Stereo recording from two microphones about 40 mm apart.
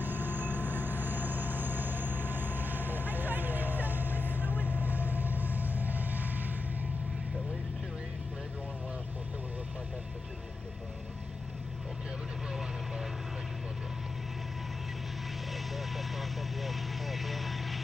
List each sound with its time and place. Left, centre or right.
0.0 s vehicle: right
15.5 s vehicle: centre